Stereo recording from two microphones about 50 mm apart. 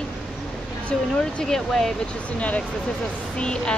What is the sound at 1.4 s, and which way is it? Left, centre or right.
Speech, centre.